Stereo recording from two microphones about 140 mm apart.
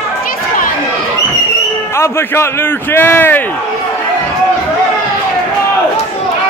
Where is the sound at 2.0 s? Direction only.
20° left (ahead or behind).